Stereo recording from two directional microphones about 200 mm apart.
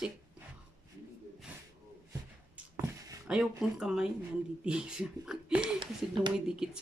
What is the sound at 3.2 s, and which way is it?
Speech, 5° right (ahead or behind).